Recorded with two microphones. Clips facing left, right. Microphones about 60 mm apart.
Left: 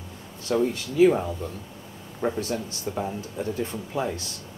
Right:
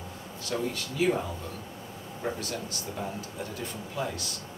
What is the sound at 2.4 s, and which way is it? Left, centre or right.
Speech, left.